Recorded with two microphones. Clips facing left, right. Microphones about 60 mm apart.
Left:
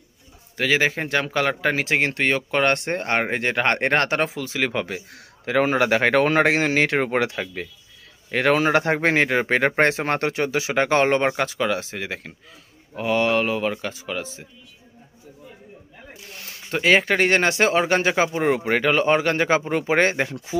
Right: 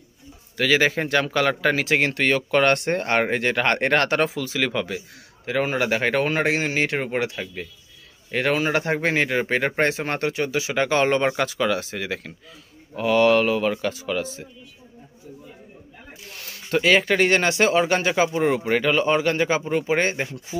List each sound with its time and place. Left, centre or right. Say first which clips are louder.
0.6 s a man's voice: right 1 dB; centre
5.4 s a man's voice: left 3 dB; left
16.3 s speech: right 4 dB; left